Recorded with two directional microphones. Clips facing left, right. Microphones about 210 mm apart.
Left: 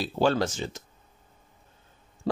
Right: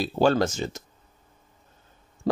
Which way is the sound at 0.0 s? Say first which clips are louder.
Right 3 dB; 45° right (ahead or behind).